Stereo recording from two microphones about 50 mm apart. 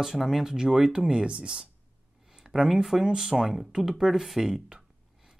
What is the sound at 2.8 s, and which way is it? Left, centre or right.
Speech, centre.